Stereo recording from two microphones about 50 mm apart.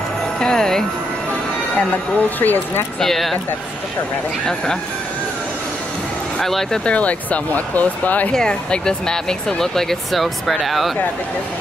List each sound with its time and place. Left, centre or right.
0.4 s music: centre
1.8 s speech: left
3.0 s speech: centre
6.4 s speech: centre
6.9 s speech: left
8.3 s speech: centre